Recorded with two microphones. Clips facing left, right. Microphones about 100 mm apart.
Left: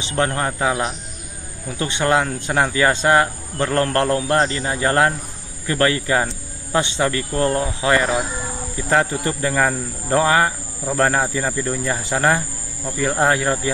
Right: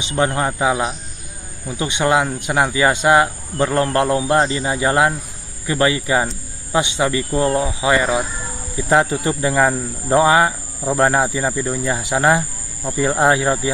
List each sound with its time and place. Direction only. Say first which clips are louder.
0.0 s speech: right 2 dB; 15° right (ahead or behind)